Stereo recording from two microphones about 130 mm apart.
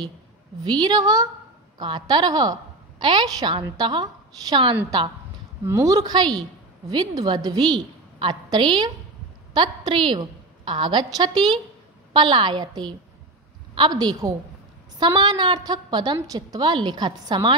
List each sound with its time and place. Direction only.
0.7 s a woman's voice: 35° right (ahead or behind)
5.7 s a woman's voice: 25° right (ahead or behind)